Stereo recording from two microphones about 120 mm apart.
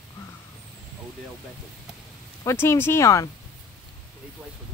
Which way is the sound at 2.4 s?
20° left (ahead or behind).